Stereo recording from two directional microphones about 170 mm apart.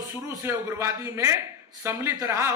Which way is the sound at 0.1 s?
20° right (ahead or behind).